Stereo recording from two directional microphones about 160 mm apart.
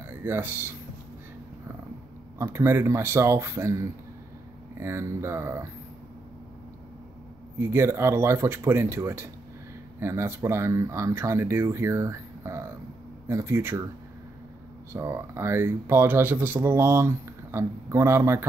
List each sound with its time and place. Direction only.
0.0 s speech: 15° right (ahead or behind)
2.3 s speech: 15° right (ahead or behind)
7.5 s speech: 15° right (ahead or behind)
14.9 s speech: 15° right (ahead or behind)